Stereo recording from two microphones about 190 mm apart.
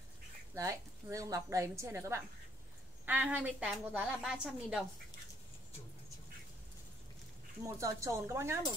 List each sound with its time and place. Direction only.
0.6 s a woman's voice: 15° right (ahead or behind)
7.6 s a woman's voice: 15° right (ahead or behind)